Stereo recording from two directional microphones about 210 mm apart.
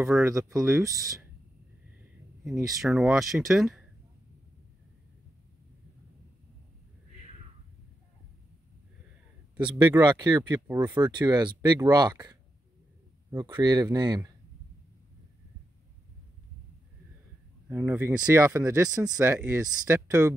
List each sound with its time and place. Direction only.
0.0 s speech: 10° right (ahead or behind)
2.7 s speech: centre (ahead or behind)
9.8 s speech: 10° right (ahead or behind)
10.0 s speech: 20° right (ahead or behind)
17.6 s speech: 10° right (ahead or behind)